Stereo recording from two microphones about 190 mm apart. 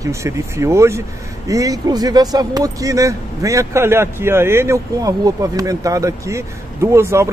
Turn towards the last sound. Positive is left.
turn(degrees=-15)  # may be behind; listen again after turning